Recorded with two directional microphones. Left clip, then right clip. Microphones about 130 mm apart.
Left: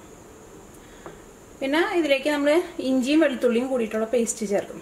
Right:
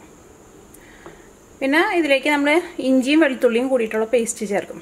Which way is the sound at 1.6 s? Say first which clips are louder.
Right 5 dB; 35° right (ahead or behind).